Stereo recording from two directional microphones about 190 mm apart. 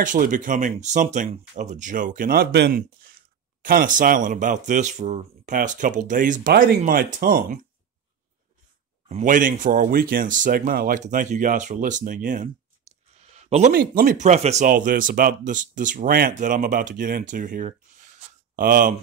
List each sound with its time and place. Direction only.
0.0 s speech: 45° right (ahead or behind)
9.1 s speech: 45° right (ahead or behind)
13.7 s speech: 50° right (ahead or behind)